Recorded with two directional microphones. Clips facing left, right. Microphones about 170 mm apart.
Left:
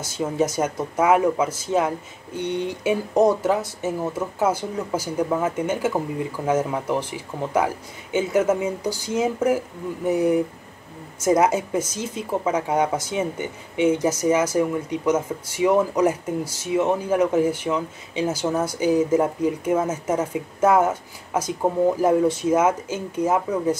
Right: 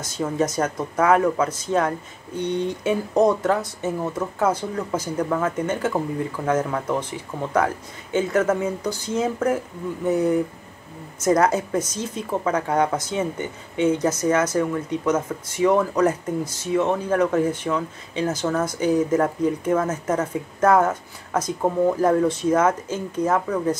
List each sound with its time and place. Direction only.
0.0 s speech: 10° left (ahead or behind)